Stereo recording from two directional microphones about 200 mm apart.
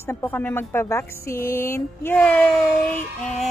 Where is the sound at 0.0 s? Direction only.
10° left (ahead or behind).